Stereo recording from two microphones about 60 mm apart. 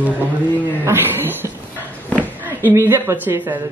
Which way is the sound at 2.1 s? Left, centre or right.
Left.